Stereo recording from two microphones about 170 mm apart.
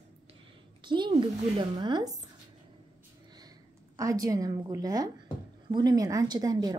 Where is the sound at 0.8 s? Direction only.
25° right (ahead or behind).